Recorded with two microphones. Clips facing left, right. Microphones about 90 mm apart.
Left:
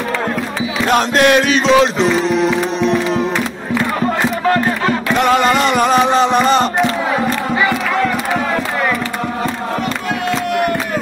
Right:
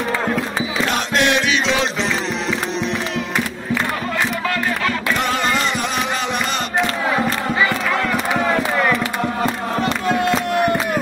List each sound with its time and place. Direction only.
1.1 s music: 45° left (ahead or behind)
4.5 s music: 35° left (ahead or behind)
5.4 s music: 65° left (ahead or behind)
5.9 s music: 35° left (ahead or behind)